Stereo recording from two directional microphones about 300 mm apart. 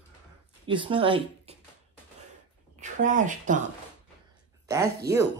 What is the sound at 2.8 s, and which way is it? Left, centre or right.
Speech, right.